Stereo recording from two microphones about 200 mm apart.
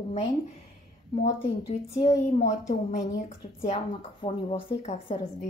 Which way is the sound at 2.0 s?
35° left (ahead or behind).